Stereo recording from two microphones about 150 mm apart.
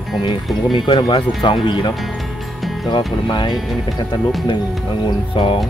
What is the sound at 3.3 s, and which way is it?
Speech, 30° left (ahead or behind).